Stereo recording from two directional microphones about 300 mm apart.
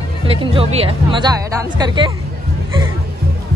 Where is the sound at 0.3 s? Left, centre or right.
Centre.